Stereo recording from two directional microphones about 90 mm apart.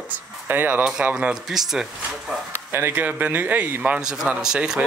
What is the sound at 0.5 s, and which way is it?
Speech, 20° right (ahead or behind).